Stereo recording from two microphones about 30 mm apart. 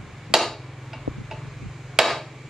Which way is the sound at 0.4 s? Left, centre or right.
Centre.